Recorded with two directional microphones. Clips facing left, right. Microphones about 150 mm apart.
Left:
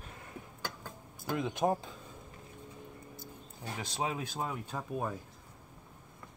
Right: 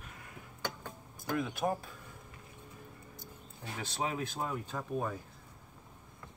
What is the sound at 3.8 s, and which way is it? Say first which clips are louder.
Speech: even; 15° left (ahead or behind).